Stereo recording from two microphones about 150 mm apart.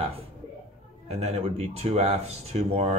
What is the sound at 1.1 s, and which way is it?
Speech, 45° right (ahead or behind).